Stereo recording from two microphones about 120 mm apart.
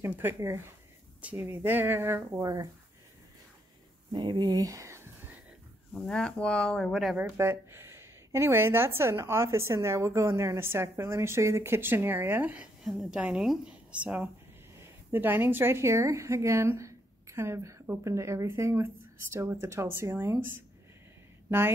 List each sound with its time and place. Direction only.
0.0 s a woman's voice: 20° right (ahead or behind)
2.4 s speech: 30° right (ahead or behind)
4.1 s a sound: 40° right (ahead or behind); by 5.4 s 20° right (ahead or behind)
5.9 s speech: 5° left (ahead or behind)
7.2 s a woman's voice: 20° right (ahead or behind)
12.8 s a woman's voice: centre (ahead or behind); by 20.3 s 20° right (ahead or behind)
21.5 s speech: 15° right (ahead or behind)